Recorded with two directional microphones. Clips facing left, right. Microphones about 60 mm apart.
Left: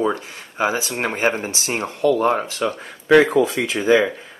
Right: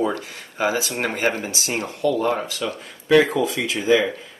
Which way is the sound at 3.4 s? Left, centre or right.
Left.